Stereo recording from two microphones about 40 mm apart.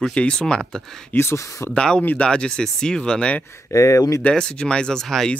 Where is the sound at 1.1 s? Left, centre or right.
Left.